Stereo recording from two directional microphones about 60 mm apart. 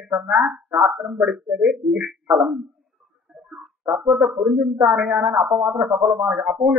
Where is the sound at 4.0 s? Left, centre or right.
Right.